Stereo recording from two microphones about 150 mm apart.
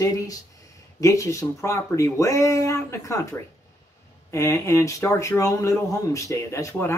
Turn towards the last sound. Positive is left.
turn(degrees=20)  # may be behind; listen again after turning